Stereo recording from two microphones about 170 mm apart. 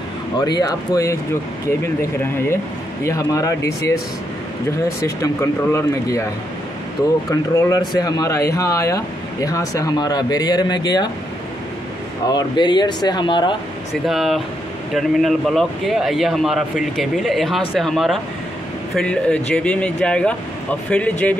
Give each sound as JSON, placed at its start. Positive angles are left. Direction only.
{"t": 0.4, "sound": "speech", "side_deg": 20}
{"t": 5.0, "sound": "speech", "side_deg": 15}
{"t": 7.2, "sound": "speech", "side_deg": 20}
{"t": 12.3, "sound": "speech", "side_deg": 25}
{"t": 14.0, "sound": "a man's voice", "side_deg": 0}